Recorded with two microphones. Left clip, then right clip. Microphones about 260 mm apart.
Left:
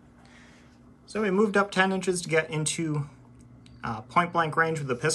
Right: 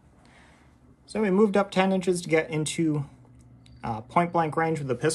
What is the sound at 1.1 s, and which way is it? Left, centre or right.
Speech, centre.